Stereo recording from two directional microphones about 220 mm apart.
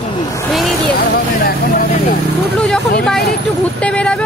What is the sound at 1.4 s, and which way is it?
Speech, 45° left (ahead or behind).